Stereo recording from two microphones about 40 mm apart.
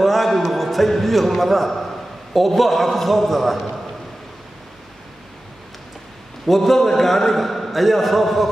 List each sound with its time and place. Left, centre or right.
0.0 s a sound: centre
2.3 s a man's voice: centre
6.4 s a man's voice: centre